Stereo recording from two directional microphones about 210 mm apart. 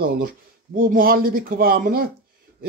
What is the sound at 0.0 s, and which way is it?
Speech, 45° right (ahead or behind).